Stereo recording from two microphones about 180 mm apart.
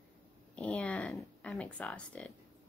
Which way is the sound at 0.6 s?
5° left (ahead or behind).